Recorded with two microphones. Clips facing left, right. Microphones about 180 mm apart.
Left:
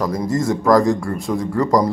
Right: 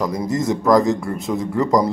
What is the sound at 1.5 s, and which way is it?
Speech, 20° right (ahead or behind).